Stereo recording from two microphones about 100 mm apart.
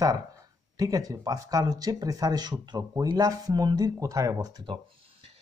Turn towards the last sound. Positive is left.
turn(degrees=-35)  # may be behind; listen again after turning